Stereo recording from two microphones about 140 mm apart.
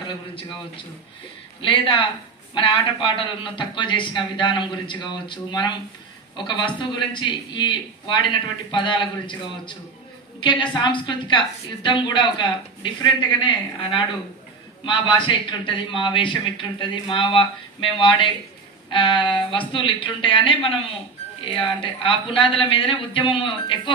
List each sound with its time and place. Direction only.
1.6 s a man's voice: 40° left (ahead or behind)
10.4 s a man's voice: 35° left (ahead or behind)